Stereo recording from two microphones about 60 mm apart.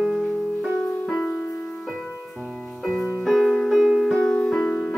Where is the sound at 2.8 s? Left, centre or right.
Centre.